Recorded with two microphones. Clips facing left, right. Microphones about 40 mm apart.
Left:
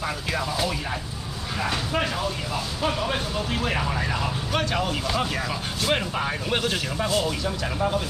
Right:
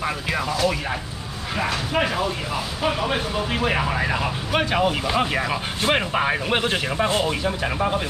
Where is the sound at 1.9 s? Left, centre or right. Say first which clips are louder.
Right 4 dB; centre.